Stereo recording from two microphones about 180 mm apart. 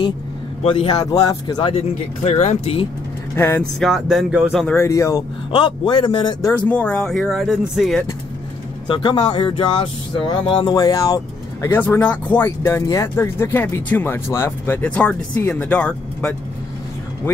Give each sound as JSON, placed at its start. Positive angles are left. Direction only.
{"t": 0.7, "sound": "speech", "side_deg": 30}
{"t": 3.3, "sound": "speech", "side_deg": 10}
{"t": 3.9, "sound": "speech", "side_deg": 0}
{"t": 4.7, "sound": "speech", "side_deg": 15}
{"t": 6.7, "sound": "speech", "side_deg": 5}
{"t": 8.8, "sound": "speech", "side_deg": 25}